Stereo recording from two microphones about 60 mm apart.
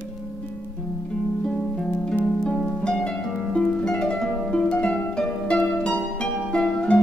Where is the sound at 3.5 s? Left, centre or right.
Centre.